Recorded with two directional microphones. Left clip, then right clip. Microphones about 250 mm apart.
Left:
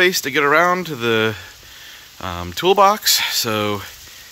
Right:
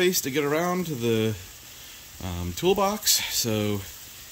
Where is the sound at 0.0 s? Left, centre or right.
Centre.